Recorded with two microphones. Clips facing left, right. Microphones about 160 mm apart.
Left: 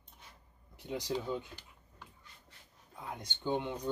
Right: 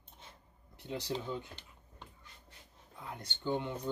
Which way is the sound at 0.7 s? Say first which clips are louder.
Left 2 dB; 15° left (ahead or behind).